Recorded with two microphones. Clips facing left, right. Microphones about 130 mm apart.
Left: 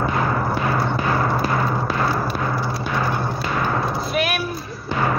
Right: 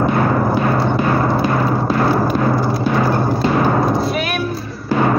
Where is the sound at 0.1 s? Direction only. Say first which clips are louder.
Right 6 dB; 30° right (ahead or behind).